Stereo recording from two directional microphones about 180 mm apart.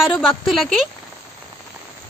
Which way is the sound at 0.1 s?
Centre (ahead or behind).